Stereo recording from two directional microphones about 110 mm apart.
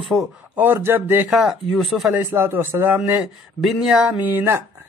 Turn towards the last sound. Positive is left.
turn(degrees=-20)  # may be behind; listen again after turning